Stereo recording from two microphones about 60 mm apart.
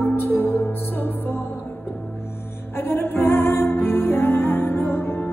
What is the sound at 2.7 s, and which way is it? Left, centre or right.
Music, left.